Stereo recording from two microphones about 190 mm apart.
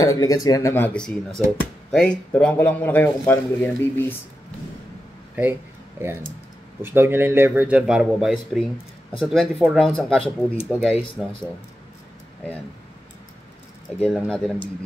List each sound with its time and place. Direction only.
0.0 s a man's voice: 20° left (ahead or behind)
5.3 s a sound: 10° right (ahead or behind)
6.8 s speech: 10° right (ahead or behind)
14.0 s speech: centre (ahead or behind)